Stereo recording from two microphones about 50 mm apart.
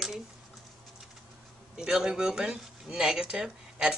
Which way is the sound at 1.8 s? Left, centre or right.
Centre.